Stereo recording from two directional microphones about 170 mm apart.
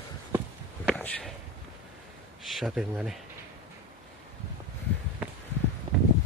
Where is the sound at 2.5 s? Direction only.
Centre (ahead or behind).